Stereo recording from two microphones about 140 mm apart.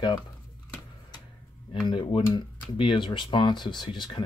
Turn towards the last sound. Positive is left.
turn(degrees=35)  # may be behind; listen again after turning